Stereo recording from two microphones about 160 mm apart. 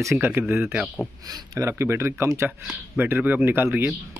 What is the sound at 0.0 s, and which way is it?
Speech, 15° right (ahead or behind).